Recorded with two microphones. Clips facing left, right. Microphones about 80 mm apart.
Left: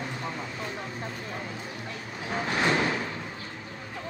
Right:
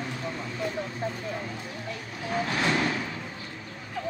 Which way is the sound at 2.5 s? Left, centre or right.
Centre.